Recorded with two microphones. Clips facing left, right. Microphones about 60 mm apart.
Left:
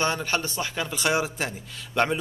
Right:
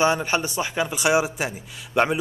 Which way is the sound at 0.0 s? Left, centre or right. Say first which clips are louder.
Right 5 dB; centre.